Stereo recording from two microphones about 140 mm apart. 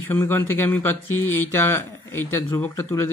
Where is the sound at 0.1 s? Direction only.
15° left (ahead or behind).